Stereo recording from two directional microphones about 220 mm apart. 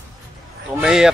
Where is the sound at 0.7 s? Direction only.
Centre (ahead or behind).